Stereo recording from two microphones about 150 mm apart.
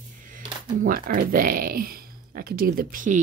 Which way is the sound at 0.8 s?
70° right (ahead or behind).